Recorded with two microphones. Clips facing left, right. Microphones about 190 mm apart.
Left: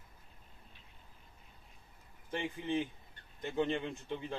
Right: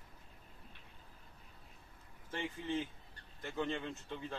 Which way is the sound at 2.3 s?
15° left (ahead or behind).